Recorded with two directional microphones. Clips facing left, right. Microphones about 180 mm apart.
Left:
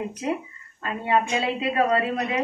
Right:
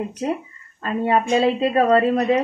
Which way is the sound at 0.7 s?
35° right (ahead or behind).